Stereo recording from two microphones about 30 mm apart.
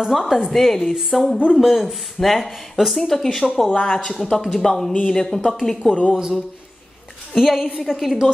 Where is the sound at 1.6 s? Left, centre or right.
Centre.